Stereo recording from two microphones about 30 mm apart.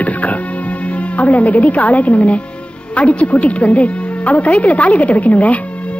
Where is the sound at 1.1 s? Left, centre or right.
Left.